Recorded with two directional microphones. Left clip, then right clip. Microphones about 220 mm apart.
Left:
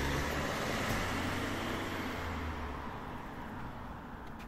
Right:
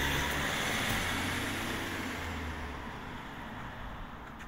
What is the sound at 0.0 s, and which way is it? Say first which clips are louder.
Vehicle: right 4 dB; 35° right (ahead or behind).